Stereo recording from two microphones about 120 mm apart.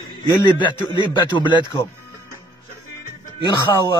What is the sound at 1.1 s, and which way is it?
Speech, 40° left (ahead or behind).